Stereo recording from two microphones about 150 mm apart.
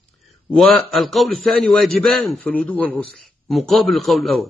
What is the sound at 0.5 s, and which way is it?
A man's voice, centre (ahead or behind).